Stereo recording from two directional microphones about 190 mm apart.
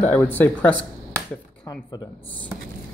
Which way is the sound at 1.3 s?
10° left (ahead or behind).